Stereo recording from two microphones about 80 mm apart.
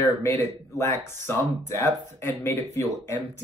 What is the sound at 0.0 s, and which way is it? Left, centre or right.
Speech, left.